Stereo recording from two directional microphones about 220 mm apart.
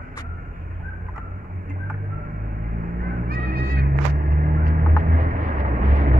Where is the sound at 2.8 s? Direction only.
40° right (ahead or behind).